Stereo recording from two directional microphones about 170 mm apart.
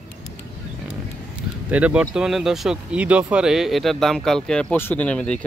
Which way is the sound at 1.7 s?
10° right (ahead or behind).